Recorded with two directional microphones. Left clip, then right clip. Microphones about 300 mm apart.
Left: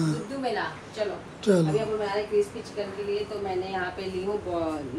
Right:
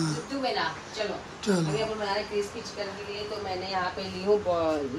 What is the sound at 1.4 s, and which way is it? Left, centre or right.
Speech, centre.